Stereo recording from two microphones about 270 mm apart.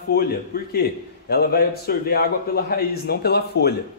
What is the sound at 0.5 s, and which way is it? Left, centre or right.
A man's voice, left.